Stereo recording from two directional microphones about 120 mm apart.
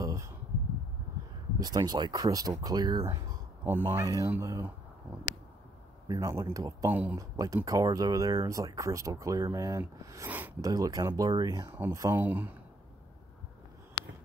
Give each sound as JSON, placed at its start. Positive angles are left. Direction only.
{"t": 0.0, "sound": "a sound", "side_deg": -25}
{"t": 1.6, "sound": "speech", "side_deg": -35}
{"t": 3.6, "sound": "speech", "side_deg": -20}
{"t": 6.0, "sound": "speech", "side_deg": -25}
{"t": 6.9, "sound": "speech", "side_deg": -15}
{"t": 7.2, "sound": "speech", "side_deg": -30}
{"t": 11.7, "sound": "speech", "side_deg": -15}